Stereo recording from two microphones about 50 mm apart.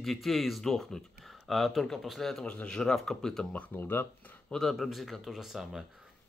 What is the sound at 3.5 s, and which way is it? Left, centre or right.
Speech, left.